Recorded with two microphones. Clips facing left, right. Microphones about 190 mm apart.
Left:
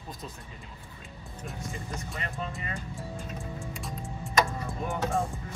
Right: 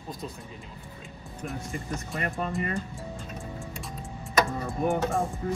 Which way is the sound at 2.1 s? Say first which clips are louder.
Right 7 dB; 55° right (ahead or behind).